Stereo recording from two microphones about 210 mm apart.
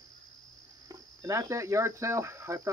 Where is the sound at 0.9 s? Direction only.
15° right (ahead or behind).